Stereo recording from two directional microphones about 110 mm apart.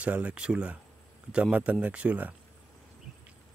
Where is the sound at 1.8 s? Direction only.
10° right (ahead or behind).